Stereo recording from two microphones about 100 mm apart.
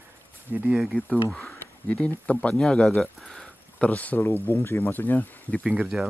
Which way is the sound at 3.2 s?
5° left (ahead or behind).